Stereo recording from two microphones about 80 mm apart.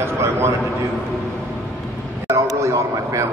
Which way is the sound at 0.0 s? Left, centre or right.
Right.